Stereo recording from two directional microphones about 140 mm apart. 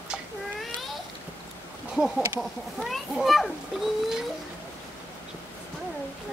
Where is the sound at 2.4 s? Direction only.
Centre (ahead or behind).